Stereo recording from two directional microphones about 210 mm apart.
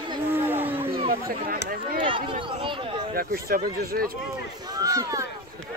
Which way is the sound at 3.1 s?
45° right (ahead or behind).